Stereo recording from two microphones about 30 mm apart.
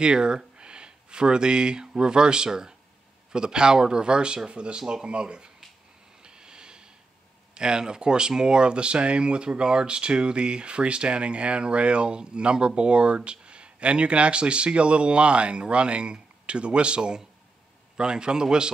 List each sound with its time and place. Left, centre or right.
0.0 s speech: right
6.2 s a sound: right
7.5 s speech: right